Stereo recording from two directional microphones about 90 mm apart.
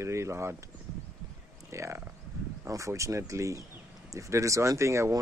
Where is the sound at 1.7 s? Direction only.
35° right (ahead or behind).